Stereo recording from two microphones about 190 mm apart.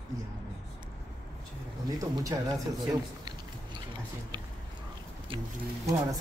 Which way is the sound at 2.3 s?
20° right (ahead or behind).